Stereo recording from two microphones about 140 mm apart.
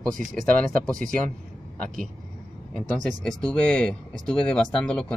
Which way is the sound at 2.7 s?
5° left (ahead or behind).